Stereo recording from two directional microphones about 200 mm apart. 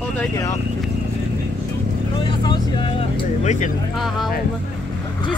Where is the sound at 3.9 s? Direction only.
Centre (ahead or behind).